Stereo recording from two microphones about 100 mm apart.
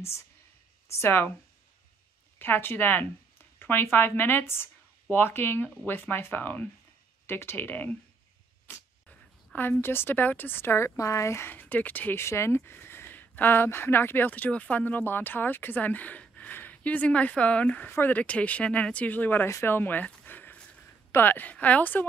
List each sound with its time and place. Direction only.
0.9 s speech: 20° left (ahead or behind)
2.3 s a woman's voice: 20° left (ahead or behind)